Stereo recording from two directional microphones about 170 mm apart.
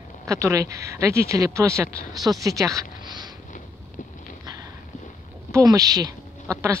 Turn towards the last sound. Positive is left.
turn(degrees=-20)  # may be behind; listen again after turning